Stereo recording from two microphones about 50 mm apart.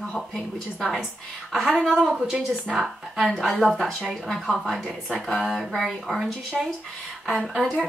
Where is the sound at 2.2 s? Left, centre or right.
Centre.